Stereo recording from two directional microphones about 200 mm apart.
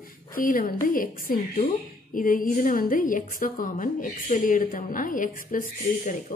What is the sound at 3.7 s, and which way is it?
A woman's voice, 40° left (ahead or behind).